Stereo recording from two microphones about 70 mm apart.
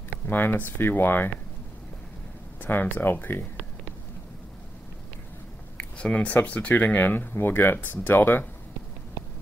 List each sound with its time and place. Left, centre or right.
0.3 s speech: left
2.6 s speech: left
5.9 s speech: centre